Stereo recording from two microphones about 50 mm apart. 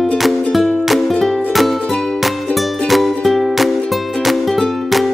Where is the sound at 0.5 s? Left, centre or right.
Centre.